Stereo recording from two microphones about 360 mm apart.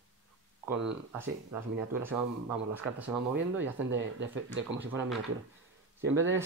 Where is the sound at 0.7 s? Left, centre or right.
Centre.